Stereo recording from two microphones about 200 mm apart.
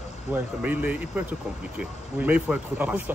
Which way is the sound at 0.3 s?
10° right (ahead or behind).